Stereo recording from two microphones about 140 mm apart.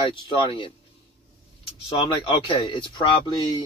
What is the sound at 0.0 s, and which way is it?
Speech, 40° left (ahead or behind).